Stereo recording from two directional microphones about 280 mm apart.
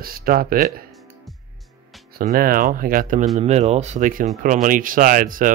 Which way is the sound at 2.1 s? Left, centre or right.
Right.